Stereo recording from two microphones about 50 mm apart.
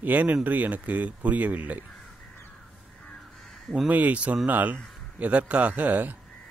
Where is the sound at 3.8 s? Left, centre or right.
Right.